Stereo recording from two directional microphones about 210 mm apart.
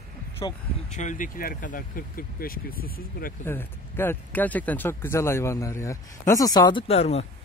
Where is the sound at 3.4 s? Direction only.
10° left (ahead or behind); by 7.3 s 30° left (ahead or behind).